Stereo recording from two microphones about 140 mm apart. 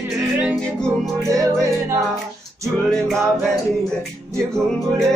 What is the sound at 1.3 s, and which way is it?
Music, 20° right (ahead or behind).